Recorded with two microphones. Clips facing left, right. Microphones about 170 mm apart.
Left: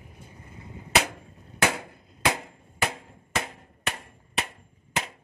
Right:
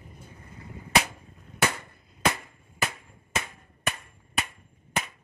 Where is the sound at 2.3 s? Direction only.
90° left; by 4.0 s 75° left (ahead or behind).